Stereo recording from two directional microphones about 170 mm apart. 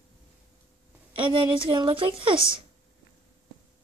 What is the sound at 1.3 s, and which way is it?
Speech, 30° right (ahead or behind).